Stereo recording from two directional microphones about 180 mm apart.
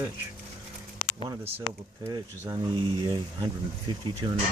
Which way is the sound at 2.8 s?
25° right (ahead or behind).